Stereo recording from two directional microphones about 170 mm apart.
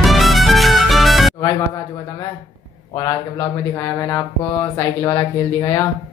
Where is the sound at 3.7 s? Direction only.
20° left (ahead or behind).